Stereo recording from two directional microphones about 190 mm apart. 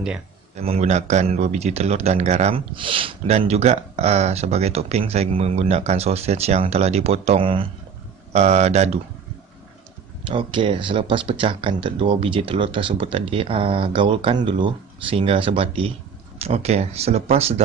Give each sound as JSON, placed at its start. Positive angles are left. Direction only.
{"t": 0.6, "sound": "a man's voice", "side_deg": -35}
{"t": 10.2, "sound": "a man's voice", "side_deg": -25}